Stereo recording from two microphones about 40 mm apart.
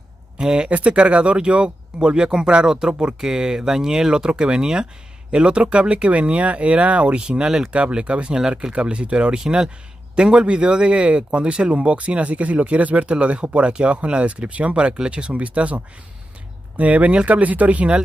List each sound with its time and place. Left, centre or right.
0.4 s speech: centre
0.7 s speech: right
7.2 s speech: right